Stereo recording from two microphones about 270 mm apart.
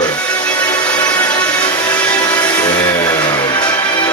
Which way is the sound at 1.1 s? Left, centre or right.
Centre.